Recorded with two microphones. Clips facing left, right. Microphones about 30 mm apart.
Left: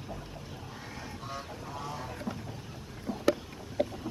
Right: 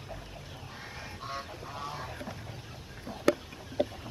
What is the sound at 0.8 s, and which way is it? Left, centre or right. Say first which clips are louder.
Honk: right 1 dB; centre.